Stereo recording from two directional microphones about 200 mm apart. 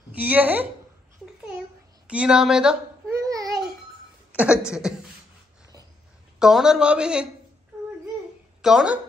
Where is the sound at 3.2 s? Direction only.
15° right (ahead or behind).